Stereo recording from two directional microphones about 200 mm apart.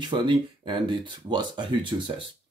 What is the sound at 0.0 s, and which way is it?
Speech, 25° right (ahead or behind).